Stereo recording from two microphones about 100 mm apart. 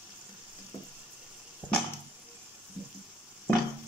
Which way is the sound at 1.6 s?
20° right (ahead or behind).